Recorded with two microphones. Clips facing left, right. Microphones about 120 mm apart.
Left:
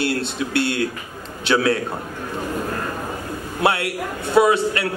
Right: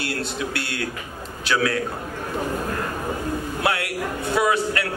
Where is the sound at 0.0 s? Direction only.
25° left (ahead or behind).